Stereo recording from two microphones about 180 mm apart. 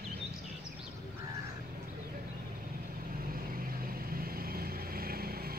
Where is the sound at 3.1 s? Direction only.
55° right (ahead or behind).